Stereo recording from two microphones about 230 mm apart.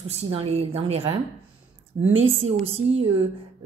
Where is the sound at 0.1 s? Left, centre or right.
Right.